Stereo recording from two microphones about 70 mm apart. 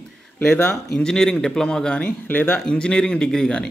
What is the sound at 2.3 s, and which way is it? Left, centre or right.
Speech, left.